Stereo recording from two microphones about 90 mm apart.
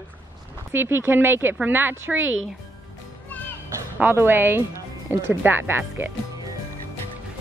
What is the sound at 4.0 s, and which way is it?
Speech, 25° right (ahead or behind).